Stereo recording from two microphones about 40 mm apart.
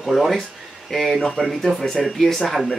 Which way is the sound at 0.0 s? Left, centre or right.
Centre.